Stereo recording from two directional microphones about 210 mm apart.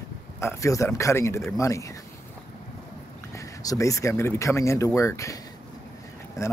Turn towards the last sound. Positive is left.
turn(degrees=15)  # may be behind; listen again after turning